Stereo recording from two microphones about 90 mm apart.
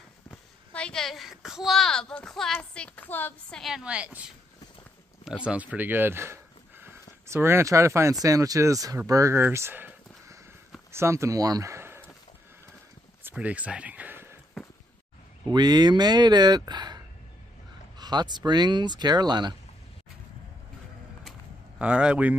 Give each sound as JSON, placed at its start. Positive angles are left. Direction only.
{"t": 0.3, "sound": "a woman's voice", "side_deg": 10}
{"t": 3.1, "sound": "a woman's voice", "side_deg": 20}
{"t": 3.4, "sound": "a woman's voice", "side_deg": 5}
{"t": 3.7, "sound": "speech", "side_deg": -10}
{"t": 5.4, "sound": "speech", "side_deg": -15}
{"t": 13.2, "sound": "speech", "side_deg": -15}
{"t": 15.5, "sound": "speech", "side_deg": -50}
{"t": 21.7, "sound": "speech", "side_deg": -15}